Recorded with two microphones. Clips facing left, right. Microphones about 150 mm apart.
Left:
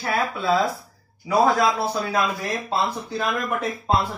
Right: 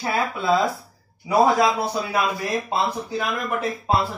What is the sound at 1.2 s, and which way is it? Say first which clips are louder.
A man's voice: right 1 dB; 15° right (ahead or behind).